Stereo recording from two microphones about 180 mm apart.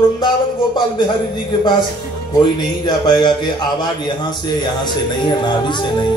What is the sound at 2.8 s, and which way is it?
Speech, 25° left (ahead or behind).